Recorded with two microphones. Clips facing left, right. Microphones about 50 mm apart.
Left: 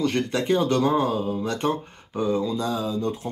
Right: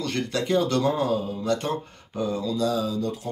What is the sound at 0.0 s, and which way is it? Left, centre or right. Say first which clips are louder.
Speech: left 3 dB; left.